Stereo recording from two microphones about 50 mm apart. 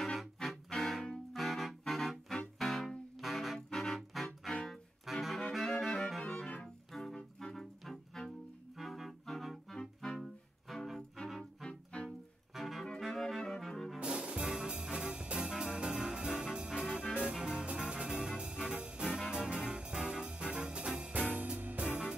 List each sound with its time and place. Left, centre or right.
0.7 s music: centre
6.4 s music: left
6.9 s music: centre
8.7 s clarinet: centre
10.1 s music: centre
11.6 s music: centre
12.5 s music: centre
13.9 s music: centre